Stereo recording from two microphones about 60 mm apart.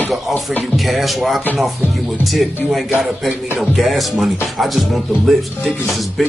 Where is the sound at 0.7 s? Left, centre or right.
Centre.